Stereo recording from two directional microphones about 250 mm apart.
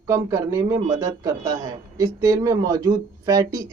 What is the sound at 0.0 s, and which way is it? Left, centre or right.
A man's voice, centre.